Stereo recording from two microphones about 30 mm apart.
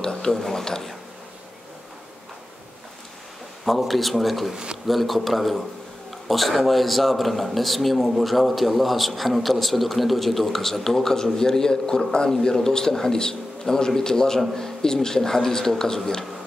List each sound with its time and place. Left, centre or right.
0.0 s speech: centre
3.6 s a man's voice: centre